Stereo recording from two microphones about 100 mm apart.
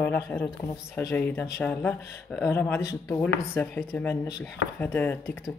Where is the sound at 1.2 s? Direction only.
20° left (ahead or behind).